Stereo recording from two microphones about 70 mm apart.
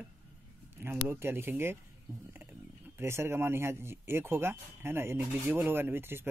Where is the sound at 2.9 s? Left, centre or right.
Right.